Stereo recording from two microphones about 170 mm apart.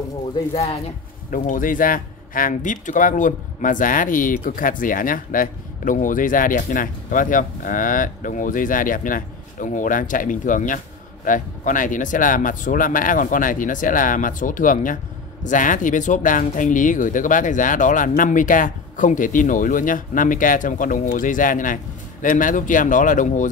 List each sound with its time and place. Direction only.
1.3 s speech: 50° left (ahead or behind)